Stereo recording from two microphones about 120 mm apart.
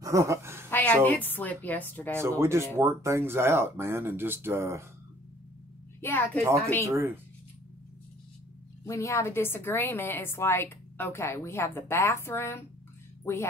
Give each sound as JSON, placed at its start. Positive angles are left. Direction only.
{"t": 0.0, "sound": "speech", "side_deg": -25}
{"t": 0.7, "sound": "a sound", "side_deg": 15}
{"t": 1.0, "sound": "a woman's voice", "side_deg": 15}
{"t": 2.1, "sound": "speech", "side_deg": -20}
{"t": 5.9, "sound": "a woman's voice", "side_deg": 15}
{"t": 6.8, "sound": "speech", "side_deg": -25}
{"t": 8.8, "sound": "a woman's voice", "side_deg": 25}